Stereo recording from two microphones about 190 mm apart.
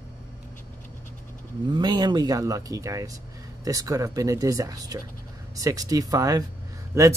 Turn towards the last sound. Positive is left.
turn(degrees=-15)  # may be behind; listen again after turning